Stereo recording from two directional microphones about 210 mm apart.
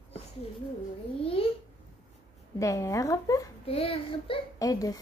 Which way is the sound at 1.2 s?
25° left (ahead or behind).